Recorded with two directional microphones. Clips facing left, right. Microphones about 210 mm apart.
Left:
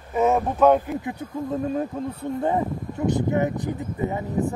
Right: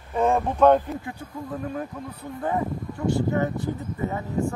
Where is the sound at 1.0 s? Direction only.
20° left (ahead or behind).